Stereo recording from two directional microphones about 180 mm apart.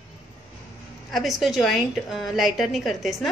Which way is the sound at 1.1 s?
Centre (ahead or behind).